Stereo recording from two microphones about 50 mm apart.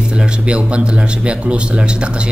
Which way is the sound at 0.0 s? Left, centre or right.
Centre.